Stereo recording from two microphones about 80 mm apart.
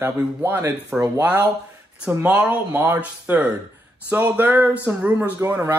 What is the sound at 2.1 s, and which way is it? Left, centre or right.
Speech, right.